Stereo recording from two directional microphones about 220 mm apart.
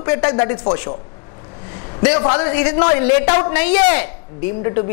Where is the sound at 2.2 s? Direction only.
25° left (ahead or behind).